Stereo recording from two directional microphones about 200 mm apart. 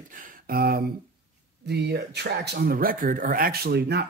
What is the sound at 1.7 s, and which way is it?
Speech, 55° right (ahead or behind).